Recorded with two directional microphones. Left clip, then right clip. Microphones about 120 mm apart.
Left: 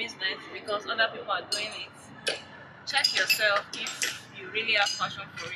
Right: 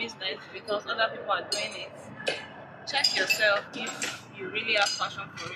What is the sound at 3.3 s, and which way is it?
Speech, 30° left (ahead or behind).